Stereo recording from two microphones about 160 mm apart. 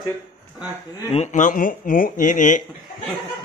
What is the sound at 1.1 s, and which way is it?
Speech, 45° left (ahead or behind).